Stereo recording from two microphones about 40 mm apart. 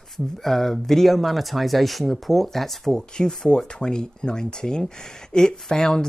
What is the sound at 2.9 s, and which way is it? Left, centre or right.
Speech, centre.